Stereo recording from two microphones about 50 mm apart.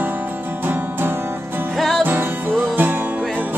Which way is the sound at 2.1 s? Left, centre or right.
Right.